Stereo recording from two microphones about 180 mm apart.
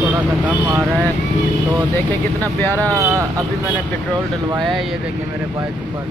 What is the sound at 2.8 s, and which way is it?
Speech, 15° right (ahead or behind).